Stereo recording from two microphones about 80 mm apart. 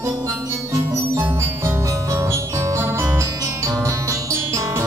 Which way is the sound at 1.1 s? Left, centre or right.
Right.